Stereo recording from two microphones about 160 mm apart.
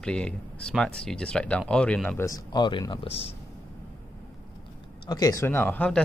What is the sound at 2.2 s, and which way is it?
Speech, 20° left (ahead or behind).